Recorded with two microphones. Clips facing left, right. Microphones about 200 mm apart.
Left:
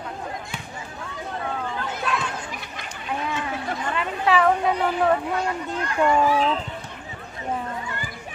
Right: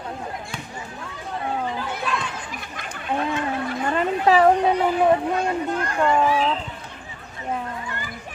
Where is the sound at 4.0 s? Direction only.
40° right (ahead or behind).